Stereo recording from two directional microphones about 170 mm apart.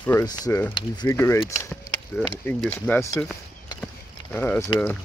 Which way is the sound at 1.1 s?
15° left (ahead or behind).